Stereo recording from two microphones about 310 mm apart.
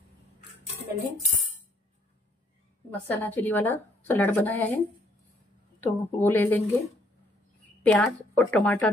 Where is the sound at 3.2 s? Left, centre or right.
Centre.